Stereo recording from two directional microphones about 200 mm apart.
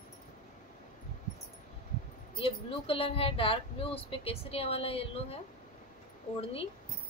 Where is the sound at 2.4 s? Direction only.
30° left (ahead or behind).